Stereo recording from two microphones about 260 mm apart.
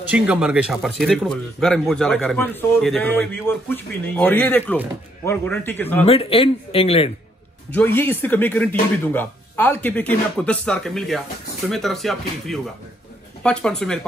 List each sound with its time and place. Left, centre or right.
0.1 s speech: centre
6.0 s speech: left
7.7 s speech: centre